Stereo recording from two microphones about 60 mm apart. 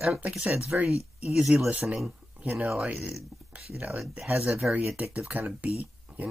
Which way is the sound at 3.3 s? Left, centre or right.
Centre.